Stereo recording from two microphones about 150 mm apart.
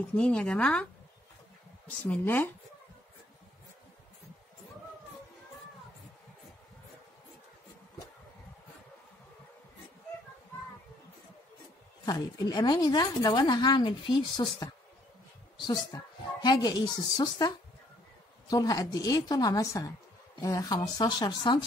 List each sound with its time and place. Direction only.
0.1 s speech: 5° left (ahead or behind)
1.9 s speech: 10° left (ahead or behind)
12.1 s speech: 30° left (ahead or behind)